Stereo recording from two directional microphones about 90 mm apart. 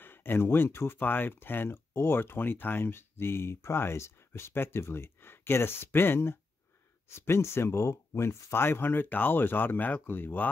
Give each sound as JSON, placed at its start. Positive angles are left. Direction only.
{"t": 0.0, "sound": "speech", "side_deg": 25}